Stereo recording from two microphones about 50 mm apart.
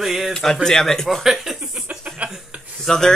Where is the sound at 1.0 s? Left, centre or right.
Centre.